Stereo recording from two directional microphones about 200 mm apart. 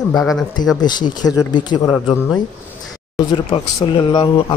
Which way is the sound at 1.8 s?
5° left (ahead or behind).